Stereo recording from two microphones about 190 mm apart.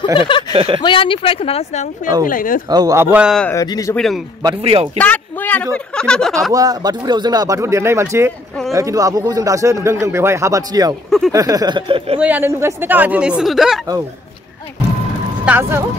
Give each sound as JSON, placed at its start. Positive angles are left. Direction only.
{"t": 0.0, "sound": "speech", "side_deg": 25}
{"t": 0.5, "sound": "speech", "side_deg": -25}
{"t": 0.8, "sound": "speech", "side_deg": 25}
{"t": 2.2, "sound": "speech", "side_deg": 45}
{"t": 2.7, "sound": "speech", "side_deg": -20}
{"t": 3.4, "sound": "speech", "side_deg": 20}
{"t": 3.9, "sound": "speech", "side_deg": 0}
{"t": 4.4, "sound": "speech", "side_deg": -25}
{"t": 4.9, "sound": "a woman's voice", "side_deg": 10}
{"t": 6.5, "sound": "speech", "side_deg": -20}
{"t": 11.1, "sound": "a sound", "side_deg": 0}
{"t": 11.3, "sound": "speech", "side_deg": -20}
{"t": 12.2, "sound": "speech", "side_deg": -10}
{"t": 15.4, "sound": "speech", "side_deg": -10}